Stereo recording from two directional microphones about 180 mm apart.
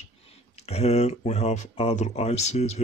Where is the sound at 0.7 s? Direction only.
35° left (ahead or behind).